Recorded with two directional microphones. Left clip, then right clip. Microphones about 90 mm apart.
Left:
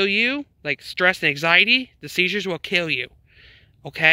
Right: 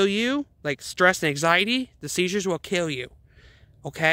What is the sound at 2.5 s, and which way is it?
Speech, 25° right (ahead or behind).